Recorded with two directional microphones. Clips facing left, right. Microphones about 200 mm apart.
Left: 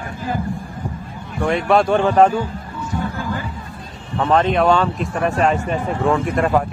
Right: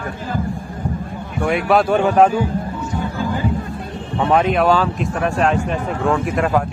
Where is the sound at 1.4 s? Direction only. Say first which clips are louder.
Even; 5° right (ahead or behind).